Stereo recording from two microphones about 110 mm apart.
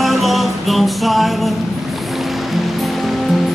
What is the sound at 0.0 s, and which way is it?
Music, centre (ahead or behind).